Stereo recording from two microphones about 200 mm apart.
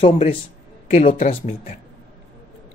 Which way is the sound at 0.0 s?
35° left (ahead or behind).